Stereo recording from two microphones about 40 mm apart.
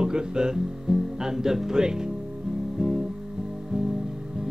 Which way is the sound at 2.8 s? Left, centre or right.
Centre.